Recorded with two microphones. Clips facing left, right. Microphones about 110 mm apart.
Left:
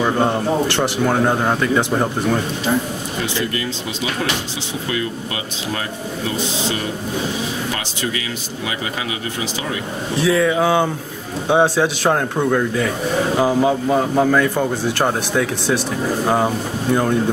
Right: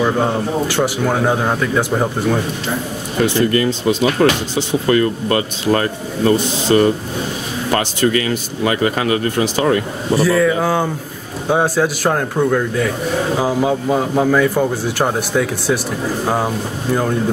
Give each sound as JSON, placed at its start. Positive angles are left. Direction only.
{"t": 0.0, "sound": "speech", "side_deg": 0}
{"t": 3.3, "sound": "speech", "side_deg": -50}
{"t": 10.1, "sound": "speech", "side_deg": 0}